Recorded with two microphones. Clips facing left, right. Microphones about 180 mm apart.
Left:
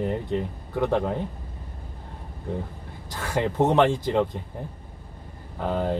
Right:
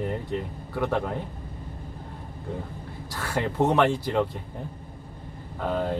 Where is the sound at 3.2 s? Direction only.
20° left (ahead or behind).